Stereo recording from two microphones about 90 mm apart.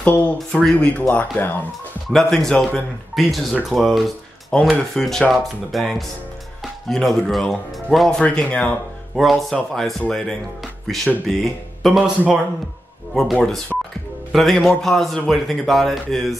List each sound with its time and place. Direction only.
0.0 s speech: 15° left (ahead or behind)
2.1 s speech: 5° left (ahead or behind)
9.1 s speech: centre (ahead or behind)
12.0 s a man's voice: 15° right (ahead or behind)
13.1 s speech: centre (ahead or behind)
13.4 s speech: 10° left (ahead or behind)